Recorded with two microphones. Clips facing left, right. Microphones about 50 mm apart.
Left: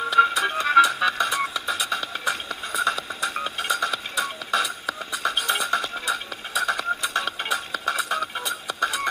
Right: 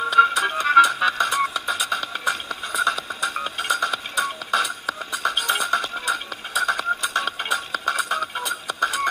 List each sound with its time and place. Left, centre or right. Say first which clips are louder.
0.2 s music: right 2 dB; centre
0.7 s music: right 2 dB; right
2.7 s music: right 2 dB; left
3.6 s music: right 3 dB; right